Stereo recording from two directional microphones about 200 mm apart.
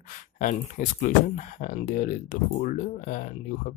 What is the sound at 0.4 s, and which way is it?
Speech, 40° left (ahead or behind).